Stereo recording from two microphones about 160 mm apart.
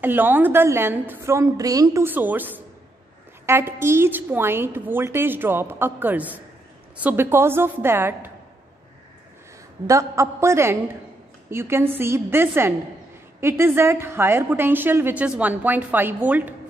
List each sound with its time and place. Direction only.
0.0 s a woman's voice: 10° right (ahead or behind)
9.8 s a woman's voice: 20° right (ahead or behind)